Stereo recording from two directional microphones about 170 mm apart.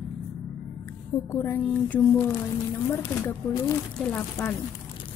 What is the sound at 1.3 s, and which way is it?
Speech, 15° left (ahead or behind).